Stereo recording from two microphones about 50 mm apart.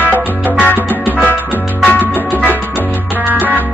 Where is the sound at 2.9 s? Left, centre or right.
Right.